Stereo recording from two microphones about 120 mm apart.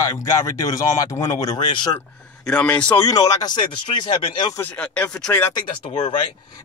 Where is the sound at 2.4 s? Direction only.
10° left (ahead or behind).